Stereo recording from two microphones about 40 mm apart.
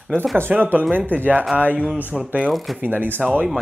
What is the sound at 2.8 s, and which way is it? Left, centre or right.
Speech, right.